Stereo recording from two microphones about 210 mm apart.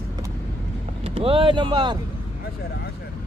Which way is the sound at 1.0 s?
25° right (ahead or behind).